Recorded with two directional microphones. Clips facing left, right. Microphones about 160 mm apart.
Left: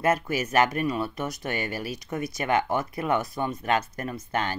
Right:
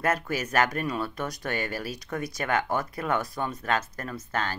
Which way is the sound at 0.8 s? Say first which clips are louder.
Left 2 dB; 10° left (ahead or behind).